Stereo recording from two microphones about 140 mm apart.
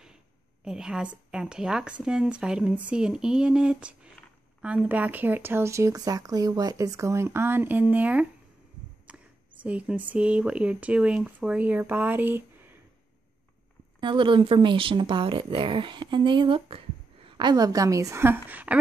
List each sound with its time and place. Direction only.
0.7 s a woman's voice: 5° right (ahead or behind)
13.9 s speech: 35° right (ahead or behind); by 18.8 s 10° right (ahead or behind)